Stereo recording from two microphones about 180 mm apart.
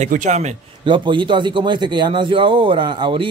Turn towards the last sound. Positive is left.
turn(degrees=-25)  # may be behind; listen again after turning